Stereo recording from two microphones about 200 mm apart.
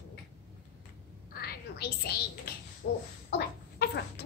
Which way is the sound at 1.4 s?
50° left (ahead or behind).